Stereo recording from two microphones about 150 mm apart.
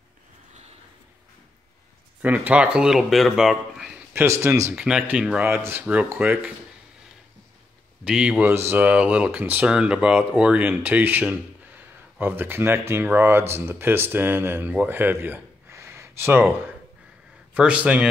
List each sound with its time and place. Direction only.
2.2 s speech: 10° right (ahead or behind)
4.1 s speech: 15° right (ahead or behind)
4.7 s speech: 5° right (ahead or behind)
8.0 s speech: 5° right (ahead or behind)
17.6 s speech: 10° right (ahead or behind)